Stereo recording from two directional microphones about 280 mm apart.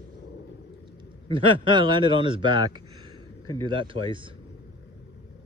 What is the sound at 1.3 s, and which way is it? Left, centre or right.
Speech, centre.